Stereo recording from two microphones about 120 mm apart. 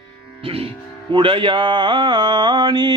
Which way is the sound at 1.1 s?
45° right (ahead or behind).